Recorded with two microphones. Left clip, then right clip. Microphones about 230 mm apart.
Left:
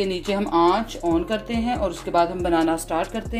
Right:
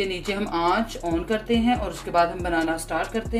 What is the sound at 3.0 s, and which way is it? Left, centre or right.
Speech, centre.